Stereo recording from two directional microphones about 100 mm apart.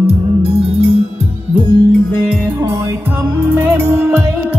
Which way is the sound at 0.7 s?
75° left (ahead or behind).